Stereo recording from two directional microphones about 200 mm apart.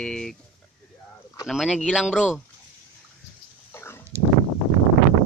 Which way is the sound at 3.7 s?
10° left (ahead or behind).